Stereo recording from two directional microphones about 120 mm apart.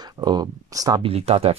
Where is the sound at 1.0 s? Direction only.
60° right (ahead or behind).